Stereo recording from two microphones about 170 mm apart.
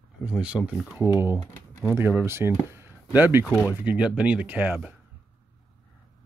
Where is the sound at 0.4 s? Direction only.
5° right (ahead or behind).